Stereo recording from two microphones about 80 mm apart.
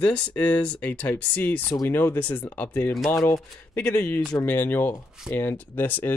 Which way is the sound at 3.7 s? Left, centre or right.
Left.